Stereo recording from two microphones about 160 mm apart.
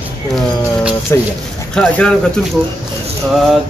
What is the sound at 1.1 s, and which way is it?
Speech, 15° left (ahead or behind).